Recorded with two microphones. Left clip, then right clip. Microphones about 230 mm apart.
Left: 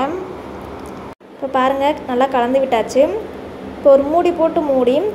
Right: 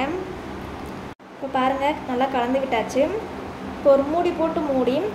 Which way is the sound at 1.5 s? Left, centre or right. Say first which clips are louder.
Left 6 dB; left.